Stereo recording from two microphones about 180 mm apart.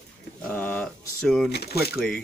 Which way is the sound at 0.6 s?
5° left (ahead or behind).